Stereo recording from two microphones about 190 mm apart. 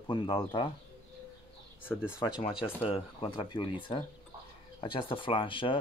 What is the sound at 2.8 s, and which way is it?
Speech, 25° left (ahead or behind).